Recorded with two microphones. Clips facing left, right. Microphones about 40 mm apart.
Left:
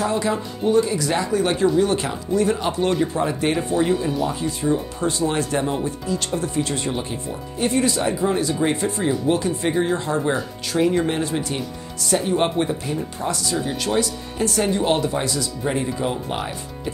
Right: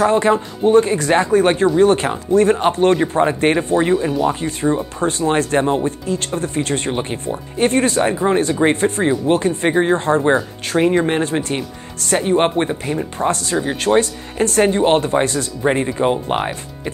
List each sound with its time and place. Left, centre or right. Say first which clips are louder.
0.0 s speech: right 7 dB; right